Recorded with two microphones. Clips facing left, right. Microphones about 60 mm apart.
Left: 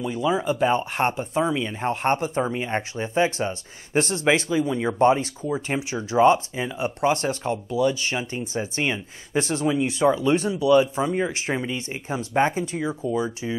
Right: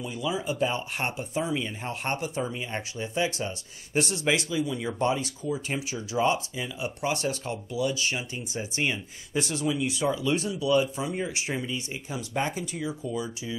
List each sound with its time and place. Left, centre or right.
0.0 s speech: left